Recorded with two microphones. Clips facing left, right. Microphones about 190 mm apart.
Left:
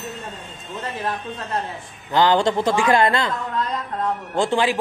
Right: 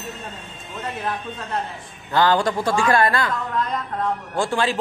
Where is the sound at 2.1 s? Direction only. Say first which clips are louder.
Left 1 dB; 20° left (ahead or behind).